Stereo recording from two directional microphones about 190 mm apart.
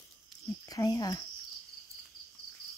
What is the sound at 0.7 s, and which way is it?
Speech, 20° left (ahead or behind).